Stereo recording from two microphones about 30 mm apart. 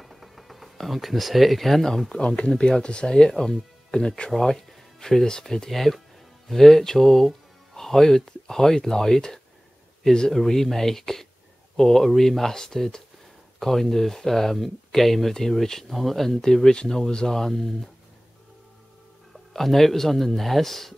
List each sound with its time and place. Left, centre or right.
0.0 s music: centre
0.7 s speech: centre
2.2 s speech: left
5.7 s speech: centre
15.9 s speech: centre
19.5 s speech: centre